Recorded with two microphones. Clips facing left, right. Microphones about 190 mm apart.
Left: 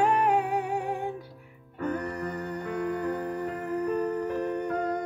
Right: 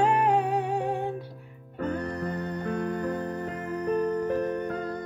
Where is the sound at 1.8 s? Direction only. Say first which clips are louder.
Right 1 dB; 35° right (ahead or behind).